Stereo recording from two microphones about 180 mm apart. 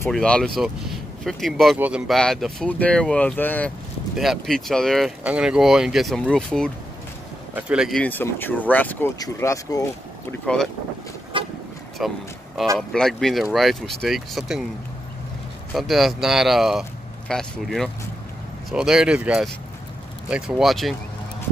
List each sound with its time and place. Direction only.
0.1 s speech: 5° left (ahead or behind)
8.0 s speech: 10° left (ahead or behind)
10.4 s speech: 5° left (ahead or behind)
11.3 s vehicle: 30° right (ahead or behind)
12.0 s speech: 5° right (ahead or behind)
15.7 s speech: centre (ahead or behind)